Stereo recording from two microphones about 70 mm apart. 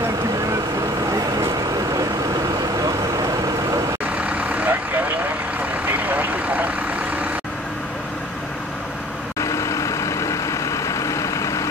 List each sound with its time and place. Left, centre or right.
4.2 s vehicle: centre
9.4 s vehicle: left